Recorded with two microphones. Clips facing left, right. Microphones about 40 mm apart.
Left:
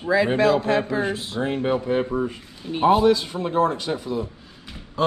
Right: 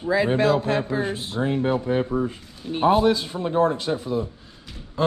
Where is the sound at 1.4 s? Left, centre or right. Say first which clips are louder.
Right 1 dB; left.